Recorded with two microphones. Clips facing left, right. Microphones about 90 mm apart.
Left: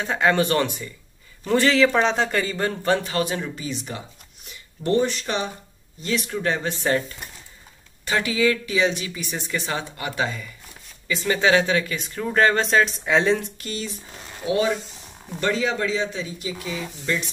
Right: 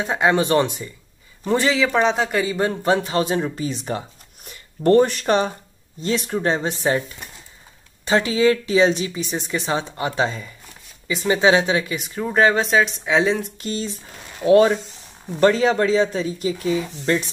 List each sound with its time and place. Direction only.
0.0 s a man's voice: 15° right (ahead or behind)
1.7 s speech: 5° right (ahead or behind)
2.5 s speech: 20° right (ahead or behind); by 4.0 s 40° right (ahead or behind)
4.5 s speech: 50° right (ahead or behind)
5.9 s speech: 30° right (ahead or behind)
6.5 s speech: 20° right (ahead or behind)
8.0 s speech: 25° right (ahead or behind); by 13.5 s 5° right (ahead or behind)
13.6 s speech: 30° right (ahead or behind)
14.4 s speech: 50° right (ahead or behind)